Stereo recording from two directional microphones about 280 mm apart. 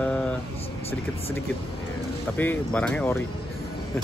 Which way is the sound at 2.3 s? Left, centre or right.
Centre.